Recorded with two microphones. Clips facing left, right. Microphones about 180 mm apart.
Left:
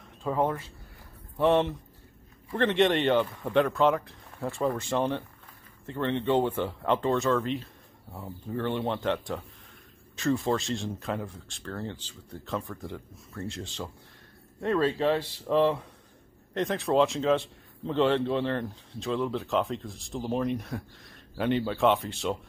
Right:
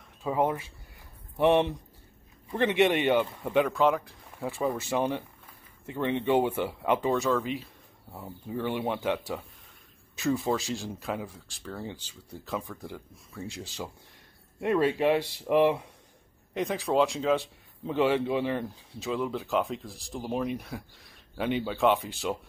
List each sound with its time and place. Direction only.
0.2 s speech: 10° right (ahead or behind)
16.5 s speech: centre (ahead or behind)